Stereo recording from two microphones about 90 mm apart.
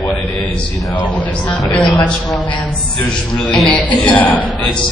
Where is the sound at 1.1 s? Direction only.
15° left (ahead or behind).